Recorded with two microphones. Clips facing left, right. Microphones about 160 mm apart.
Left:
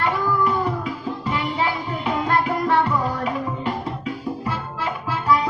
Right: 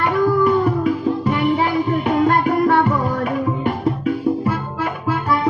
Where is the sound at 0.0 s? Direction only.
50° right (ahead or behind).